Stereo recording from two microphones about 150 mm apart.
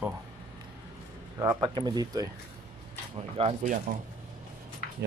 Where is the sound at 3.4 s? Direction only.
50° right (ahead or behind).